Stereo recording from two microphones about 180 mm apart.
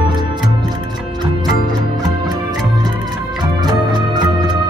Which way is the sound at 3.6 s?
25° right (ahead or behind).